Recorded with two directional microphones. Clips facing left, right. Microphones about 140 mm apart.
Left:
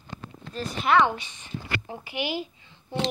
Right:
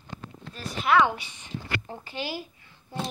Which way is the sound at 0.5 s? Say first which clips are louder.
Left 1 dB; centre (ahead or behind).